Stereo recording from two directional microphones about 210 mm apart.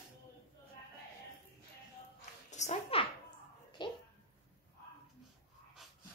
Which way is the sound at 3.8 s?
20° left (ahead or behind).